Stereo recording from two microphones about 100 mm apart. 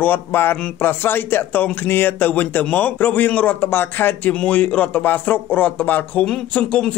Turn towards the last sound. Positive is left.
turn(degrees=10)  # may be behind; listen again after turning